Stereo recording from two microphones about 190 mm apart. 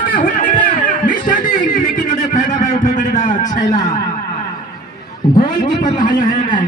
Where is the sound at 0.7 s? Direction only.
45° left (ahead or behind).